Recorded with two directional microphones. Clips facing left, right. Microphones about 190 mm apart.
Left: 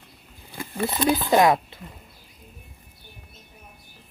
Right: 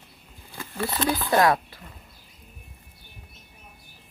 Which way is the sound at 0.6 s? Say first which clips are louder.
Left 2 dB; 15° left (ahead or behind).